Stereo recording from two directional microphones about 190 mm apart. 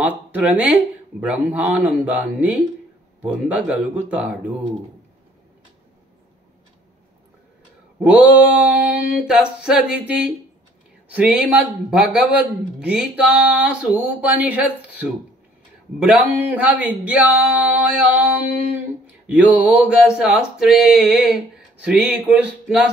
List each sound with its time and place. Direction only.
0.3 s speech: 5° right (ahead or behind)
8.0 s speech: 10° right (ahead or behind)
19.2 s a sound: 10° right (ahead or behind)